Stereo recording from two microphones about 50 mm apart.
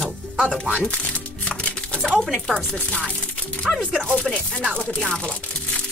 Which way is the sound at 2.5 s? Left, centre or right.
Left.